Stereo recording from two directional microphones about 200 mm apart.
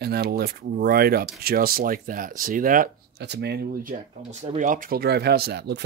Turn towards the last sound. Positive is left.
turn(degrees=-55)  # may be behind; listen again after turning